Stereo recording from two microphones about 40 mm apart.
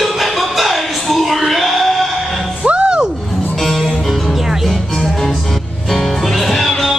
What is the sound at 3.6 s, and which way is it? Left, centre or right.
Music, centre.